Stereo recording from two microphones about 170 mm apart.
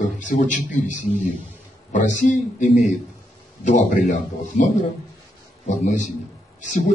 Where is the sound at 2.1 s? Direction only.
45° left (ahead or behind).